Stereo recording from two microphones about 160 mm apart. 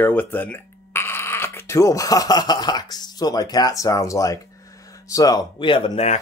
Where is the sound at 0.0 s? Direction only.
10° left (ahead or behind).